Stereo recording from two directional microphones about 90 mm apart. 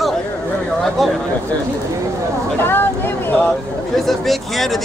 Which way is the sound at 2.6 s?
25° left (ahead or behind).